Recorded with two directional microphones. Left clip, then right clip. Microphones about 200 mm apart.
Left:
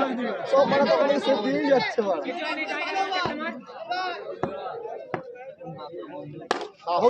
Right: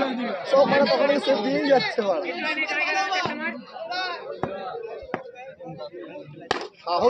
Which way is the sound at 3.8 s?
5° left (ahead or behind).